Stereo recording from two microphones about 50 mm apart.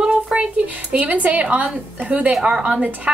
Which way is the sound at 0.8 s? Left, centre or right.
Right.